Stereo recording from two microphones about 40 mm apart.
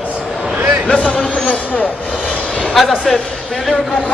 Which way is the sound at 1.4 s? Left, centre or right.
Left.